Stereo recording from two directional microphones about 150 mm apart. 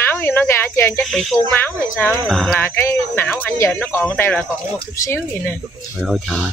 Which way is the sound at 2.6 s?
15° left (ahead or behind).